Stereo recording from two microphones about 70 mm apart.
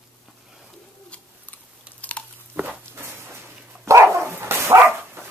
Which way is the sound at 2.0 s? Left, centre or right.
Left.